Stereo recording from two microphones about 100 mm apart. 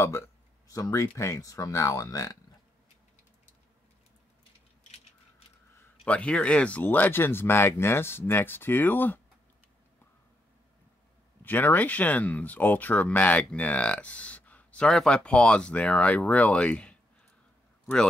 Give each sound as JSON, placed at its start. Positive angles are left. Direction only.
{"t": 0.7, "sound": "speech", "side_deg": 35}
{"t": 6.0, "sound": "speech", "side_deg": 10}
{"t": 11.4, "sound": "speech", "side_deg": 20}